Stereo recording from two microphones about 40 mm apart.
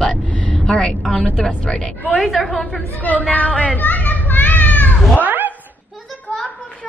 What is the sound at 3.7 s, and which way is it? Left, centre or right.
Children playing, left.